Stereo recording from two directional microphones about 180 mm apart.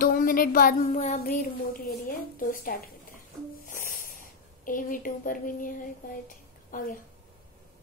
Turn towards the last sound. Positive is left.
turn(degrees=50)  # may be behind; listen again after turning